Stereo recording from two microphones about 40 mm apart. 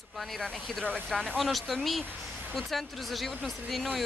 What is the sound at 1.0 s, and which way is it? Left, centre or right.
Speech, left.